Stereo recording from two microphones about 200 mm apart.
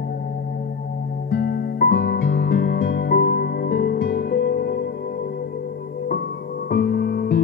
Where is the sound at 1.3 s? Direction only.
50° left (ahead or behind).